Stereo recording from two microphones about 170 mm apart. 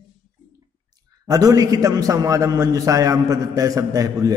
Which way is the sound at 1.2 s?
20° right (ahead or behind).